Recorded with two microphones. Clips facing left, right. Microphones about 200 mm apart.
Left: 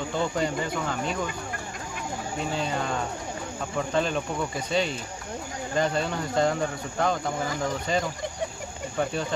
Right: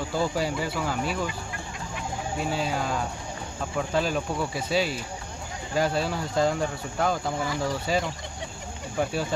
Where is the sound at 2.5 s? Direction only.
5° right (ahead or behind).